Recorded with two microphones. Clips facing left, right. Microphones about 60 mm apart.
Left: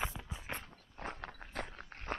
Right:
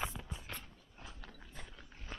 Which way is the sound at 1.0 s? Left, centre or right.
Left.